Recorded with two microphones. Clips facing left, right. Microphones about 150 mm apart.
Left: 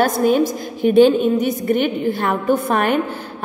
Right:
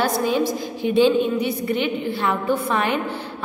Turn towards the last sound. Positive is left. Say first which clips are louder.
# left 4 dB
turn(degrees=50)  # may be behind; listen again after turning